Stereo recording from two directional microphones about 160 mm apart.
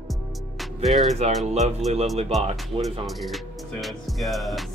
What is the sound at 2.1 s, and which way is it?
Speech, 40° right (ahead or behind).